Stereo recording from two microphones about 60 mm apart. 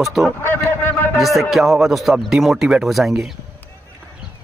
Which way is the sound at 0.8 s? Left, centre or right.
Left.